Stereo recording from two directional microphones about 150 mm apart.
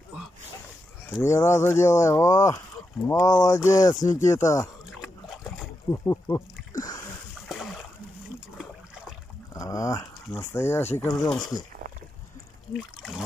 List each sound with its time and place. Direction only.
1.2 s speech: 20° left (ahead or behind)
4.9 s pig: centre (ahead or behind)
5.9 s speech: 20° left (ahead or behind)
7.4 s splash: centre (ahead or behind)
9.5 s speech: 20° left (ahead or behind)
12.7 s trickle: centre (ahead or behind)